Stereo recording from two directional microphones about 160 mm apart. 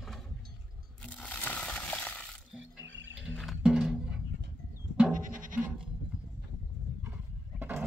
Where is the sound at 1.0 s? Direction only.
10° left (ahead or behind).